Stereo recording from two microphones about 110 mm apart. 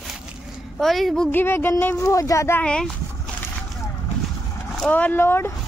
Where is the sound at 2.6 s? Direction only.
10° left (ahead or behind).